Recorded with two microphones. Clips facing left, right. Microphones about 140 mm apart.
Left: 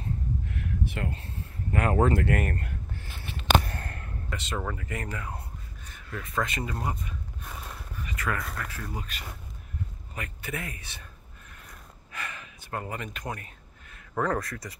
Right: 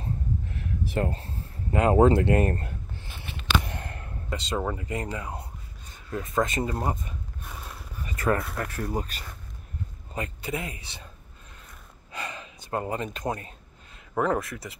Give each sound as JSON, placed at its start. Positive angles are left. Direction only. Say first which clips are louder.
{"t": 0.0, "sound": "a sound", "louder": "right 1 dB", "side_deg": -35}
{"t": 1.7, "sound": "speech", "louder": "right 5 dB", "side_deg": -20}
{"t": 6.4, "sound": "speech", "louder": "right 5 dB", "side_deg": -35}
{"t": 8.0, "sound": "a sound", "louder": "right 7 dB", "side_deg": -35}
{"t": 8.5, "sound": "speech", "louder": "right 7 dB", "side_deg": -45}
{"t": 10.1, "sound": "speech", "louder": "right 5 dB", "side_deg": -25}
{"t": 12.1, "sound": "gasp", "louder": "right 3 dB", "side_deg": -25}
{"t": 14.1, "sound": "speech", "louder": "right 3 dB", "side_deg": -10}